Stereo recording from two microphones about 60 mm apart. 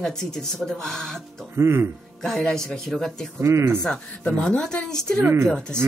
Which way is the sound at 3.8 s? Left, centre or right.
Centre.